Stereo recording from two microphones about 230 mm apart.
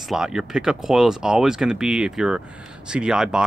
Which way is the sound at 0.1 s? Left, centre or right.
Centre.